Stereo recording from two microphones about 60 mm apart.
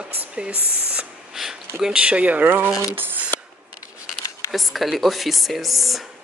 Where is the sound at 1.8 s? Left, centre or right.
Centre; by 2.7 s right.